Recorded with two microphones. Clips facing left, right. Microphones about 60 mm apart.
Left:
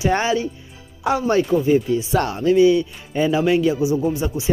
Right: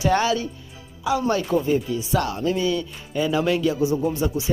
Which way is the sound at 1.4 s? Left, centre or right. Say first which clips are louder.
Left 4 dB; centre.